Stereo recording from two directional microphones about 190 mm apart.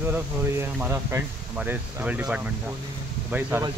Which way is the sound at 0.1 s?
10° right (ahead or behind).